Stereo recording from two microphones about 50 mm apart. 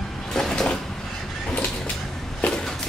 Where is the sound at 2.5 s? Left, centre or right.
Centre.